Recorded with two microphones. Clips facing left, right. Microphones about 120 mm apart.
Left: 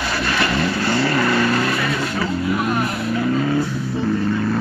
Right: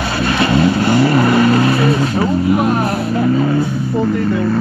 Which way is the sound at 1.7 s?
30° right (ahead or behind).